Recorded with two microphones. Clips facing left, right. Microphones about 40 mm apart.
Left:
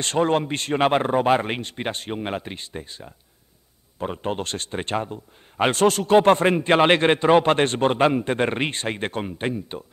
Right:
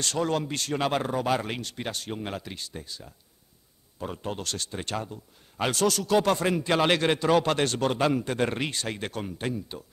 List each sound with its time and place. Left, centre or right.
0.0 s a man's voice: left